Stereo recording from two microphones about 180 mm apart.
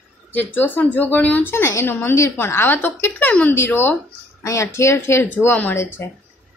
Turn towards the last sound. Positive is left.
turn(degrees=10)  # may be behind; listen again after turning